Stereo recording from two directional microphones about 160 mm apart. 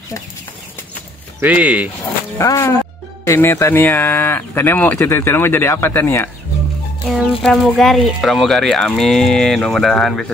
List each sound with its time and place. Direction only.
1.4 s speech: 10° right (ahead or behind)
2.3 s speech: 15° left (ahead or behind)
7.1 s speech: centre (ahead or behind)